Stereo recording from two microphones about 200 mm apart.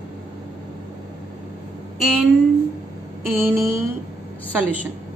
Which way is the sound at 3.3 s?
10° right (ahead or behind).